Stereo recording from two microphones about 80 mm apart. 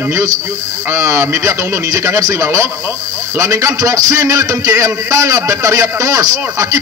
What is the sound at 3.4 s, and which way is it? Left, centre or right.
Music, right.